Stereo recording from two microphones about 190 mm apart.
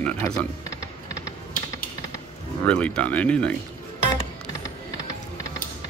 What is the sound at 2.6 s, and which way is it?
Speech, 5° left (ahead or behind).